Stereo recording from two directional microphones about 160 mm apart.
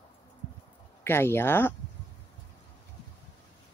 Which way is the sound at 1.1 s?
15° left (ahead or behind).